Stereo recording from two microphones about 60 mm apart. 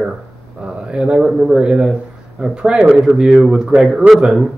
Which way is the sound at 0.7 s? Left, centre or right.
Centre.